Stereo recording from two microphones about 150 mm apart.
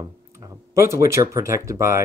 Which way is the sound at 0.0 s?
25° right (ahead or behind).